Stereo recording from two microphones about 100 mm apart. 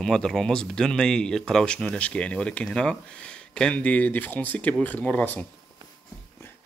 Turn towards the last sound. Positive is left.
turn(degrees=15)  # may be behind; listen again after turning